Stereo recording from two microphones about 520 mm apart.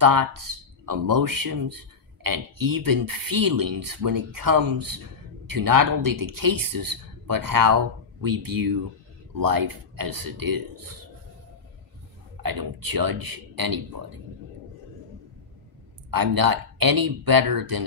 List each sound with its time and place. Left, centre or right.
0.0 s speech: right
12.4 s speech: right
16.1 s speech: right